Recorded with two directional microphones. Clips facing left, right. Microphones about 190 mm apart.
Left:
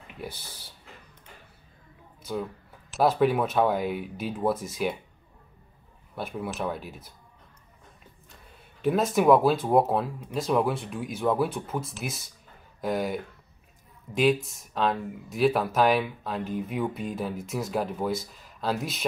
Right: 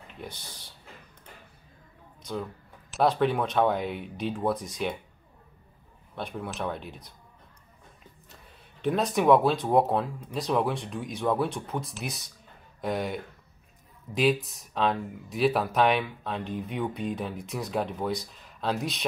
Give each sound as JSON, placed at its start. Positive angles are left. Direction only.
{"t": 0.2, "sound": "speech", "side_deg": 5}
{"t": 2.9, "sound": "speech", "side_deg": 5}
{"t": 6.1, "sound": "speech", "side_deg": 5}
{"t": 8.8, "sound": "speech", "side_deg": 5}